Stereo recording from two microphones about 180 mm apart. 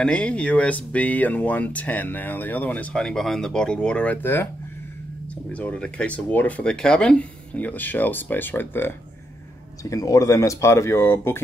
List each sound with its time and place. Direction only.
0.0 s speech: 5° left (ahead or behind)
5.5 s speech: 10° left (ahead or behind)